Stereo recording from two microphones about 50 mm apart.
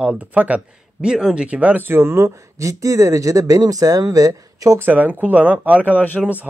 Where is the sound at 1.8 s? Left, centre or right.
Right.